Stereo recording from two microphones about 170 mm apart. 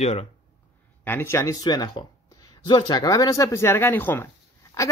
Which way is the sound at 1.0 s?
15° left (ahead or behind).